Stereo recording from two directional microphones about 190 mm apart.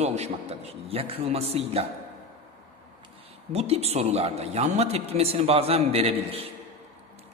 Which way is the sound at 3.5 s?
35° right (ahead or behind).